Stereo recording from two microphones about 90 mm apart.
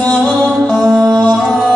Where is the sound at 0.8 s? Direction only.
45° right (ahead or behind).